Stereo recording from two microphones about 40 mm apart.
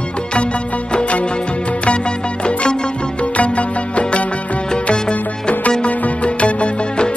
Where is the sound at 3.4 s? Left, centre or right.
Left.